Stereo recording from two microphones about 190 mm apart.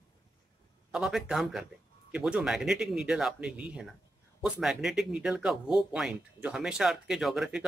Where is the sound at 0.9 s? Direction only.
Centre (ahead or behind).